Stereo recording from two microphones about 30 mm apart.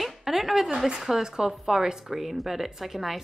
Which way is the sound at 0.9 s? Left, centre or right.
Centre.